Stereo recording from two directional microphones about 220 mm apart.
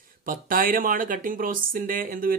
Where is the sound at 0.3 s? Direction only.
40° right (ahead or behind).